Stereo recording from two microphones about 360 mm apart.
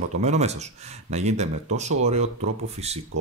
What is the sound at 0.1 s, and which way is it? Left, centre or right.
Speech, centre.